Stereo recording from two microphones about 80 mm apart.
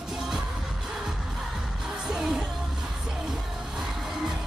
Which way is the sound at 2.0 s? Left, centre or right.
Centre.